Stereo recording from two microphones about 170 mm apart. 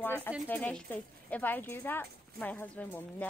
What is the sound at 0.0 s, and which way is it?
A woman's voice, 10° left (ahead or behind).